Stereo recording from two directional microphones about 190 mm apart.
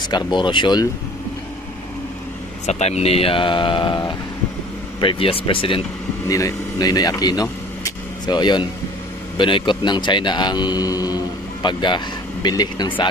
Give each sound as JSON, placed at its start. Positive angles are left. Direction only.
{"t": 0.1, "sound": "speech", "side_deg": 25}
{"t": 2.6, "sound": "speech", "side_deg": 35}
{"t": 6.2, "sound": "speech", "side_deg": 15}
{"t": 7.4, "sound": "vehicle", "side_deg": 20}
{"t": 9.4, "sound": "speech", "side_deg": 25}